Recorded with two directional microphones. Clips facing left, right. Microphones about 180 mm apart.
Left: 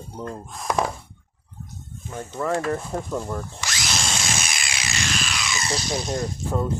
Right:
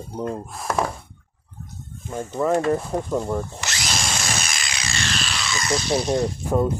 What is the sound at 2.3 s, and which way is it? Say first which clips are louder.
Speech: right 4 dB; 20° right (ahead or behind).